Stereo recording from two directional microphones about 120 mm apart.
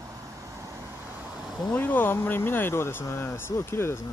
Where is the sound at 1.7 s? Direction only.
15° left (ahead or behind).